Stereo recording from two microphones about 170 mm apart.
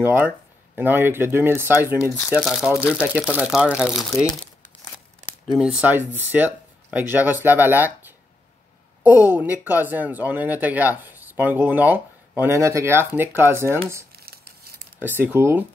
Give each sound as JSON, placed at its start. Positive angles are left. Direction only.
{"t": 0.0, "sound": "speech", "side_deg": -10}
{"t": 9.0, "sound": "speech", "side_deg": -10}
{"t": 14.1, "sound": "a sound", "side_deg": -65}
{"t": 15.0, "sound": "speech", "side_deg": -10}